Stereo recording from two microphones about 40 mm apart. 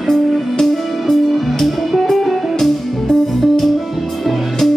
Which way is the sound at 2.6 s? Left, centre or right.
Centre.